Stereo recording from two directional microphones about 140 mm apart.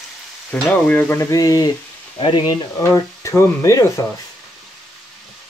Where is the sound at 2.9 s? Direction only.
15° left (ahead or behind).